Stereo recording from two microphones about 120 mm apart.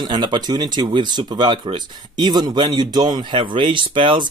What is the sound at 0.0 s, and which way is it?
Speech, 40° right (ahead or behind).